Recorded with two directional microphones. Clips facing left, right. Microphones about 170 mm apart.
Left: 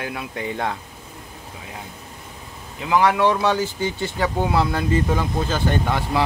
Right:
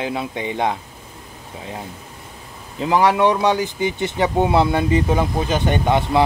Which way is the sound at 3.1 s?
20° right (ahead or behind).